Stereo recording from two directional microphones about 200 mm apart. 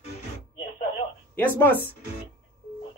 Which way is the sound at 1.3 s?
10° left (ahead or behind).